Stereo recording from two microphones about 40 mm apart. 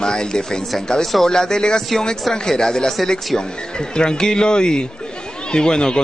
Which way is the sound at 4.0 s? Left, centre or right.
Centre.